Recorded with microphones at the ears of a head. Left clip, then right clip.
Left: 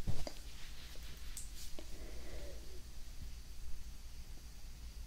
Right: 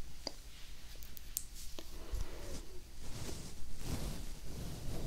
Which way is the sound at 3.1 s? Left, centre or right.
Right.